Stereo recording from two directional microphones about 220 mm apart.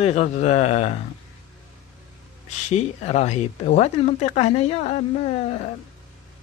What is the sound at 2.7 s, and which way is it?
Speech, 30° left (ahead or behind).